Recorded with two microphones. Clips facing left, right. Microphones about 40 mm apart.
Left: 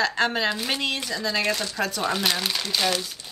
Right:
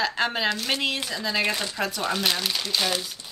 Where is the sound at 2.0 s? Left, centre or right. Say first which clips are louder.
Left 1 dB; centre.